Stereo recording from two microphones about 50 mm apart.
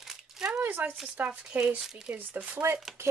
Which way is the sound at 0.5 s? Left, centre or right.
Right.